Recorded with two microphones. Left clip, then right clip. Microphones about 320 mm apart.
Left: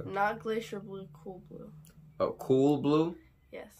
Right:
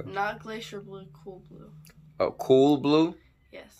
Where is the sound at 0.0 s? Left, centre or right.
Centre.